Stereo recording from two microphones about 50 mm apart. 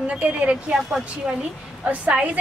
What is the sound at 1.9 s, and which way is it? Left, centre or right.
Speech, right.